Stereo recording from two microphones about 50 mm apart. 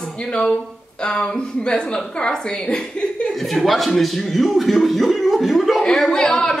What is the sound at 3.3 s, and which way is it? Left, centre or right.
Speech, centre.